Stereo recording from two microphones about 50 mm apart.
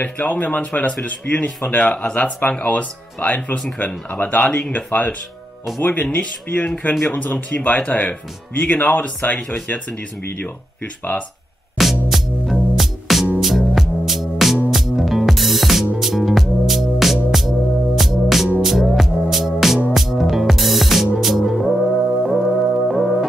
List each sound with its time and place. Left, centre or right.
0.0 s speech: left
4.5 s speech: centre
4.7 s speech: left
6.0 s speech: left
11.8 s music: centre